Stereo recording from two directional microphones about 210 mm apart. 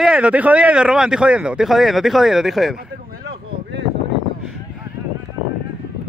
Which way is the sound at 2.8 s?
50° right (ahead or behind).